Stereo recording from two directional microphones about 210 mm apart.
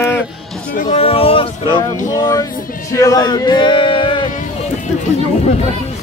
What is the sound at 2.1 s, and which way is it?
Speech, 15° left (ahead or behind).